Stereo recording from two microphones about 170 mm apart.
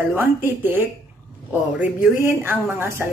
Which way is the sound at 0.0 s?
15° right (ahead or behind).